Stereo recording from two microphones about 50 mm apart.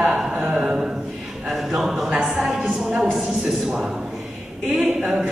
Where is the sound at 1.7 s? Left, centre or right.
Centre.